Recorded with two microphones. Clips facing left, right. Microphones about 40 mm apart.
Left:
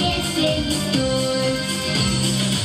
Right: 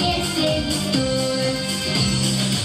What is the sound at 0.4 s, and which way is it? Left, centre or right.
Music, centre.